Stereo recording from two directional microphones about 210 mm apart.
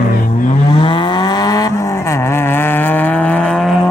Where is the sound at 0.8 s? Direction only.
20° left (ahead or behind).